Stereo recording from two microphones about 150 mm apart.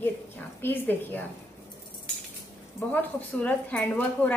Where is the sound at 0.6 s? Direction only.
10° left (ahead or behind).